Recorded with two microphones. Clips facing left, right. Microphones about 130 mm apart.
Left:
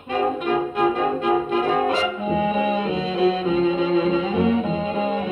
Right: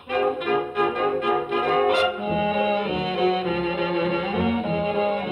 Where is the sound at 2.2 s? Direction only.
30° left (ahead or behind).